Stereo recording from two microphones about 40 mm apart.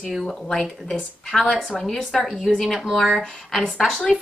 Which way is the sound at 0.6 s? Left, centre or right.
Centre.